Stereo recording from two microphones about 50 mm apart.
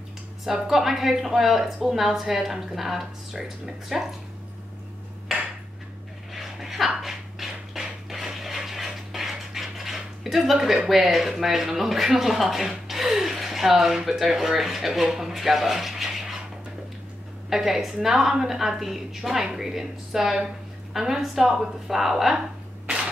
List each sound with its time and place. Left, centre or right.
0.5 s a woman's voice: centre
6.3 s dog: centre
7.0 s a sound: centre
10.9 s a woman's voice: centre
17.5 s a woman's voice: centre